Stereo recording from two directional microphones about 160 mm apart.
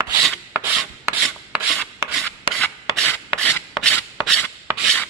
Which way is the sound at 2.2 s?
5° left (ahead or behind).